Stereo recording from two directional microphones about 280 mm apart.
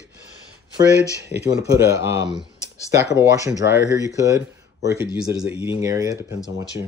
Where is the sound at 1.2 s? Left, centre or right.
Centre.